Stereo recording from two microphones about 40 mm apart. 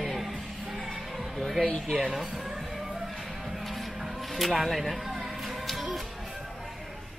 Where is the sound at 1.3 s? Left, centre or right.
Centre.